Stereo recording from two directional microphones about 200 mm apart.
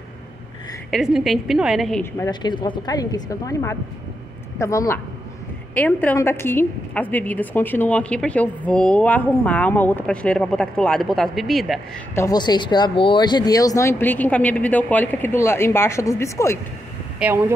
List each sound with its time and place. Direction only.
0.9 s a woman's voice: centre (ahead or behind)
2.1 s a woman's voice: 20° left (ahead or behind); by 11.8 s centre (ahead or behind)
12.2 s a woman's voice: 20° left (ahead or behind)
17.2 s speech: 10° right (ahead or behind)